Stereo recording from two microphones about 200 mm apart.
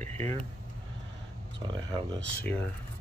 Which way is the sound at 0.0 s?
35° right (ahead or behind).